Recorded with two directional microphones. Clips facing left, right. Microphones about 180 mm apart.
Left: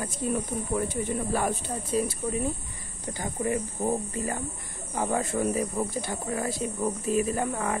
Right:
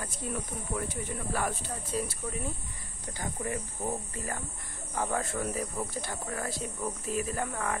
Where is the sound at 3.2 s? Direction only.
20° left (ahead or behind).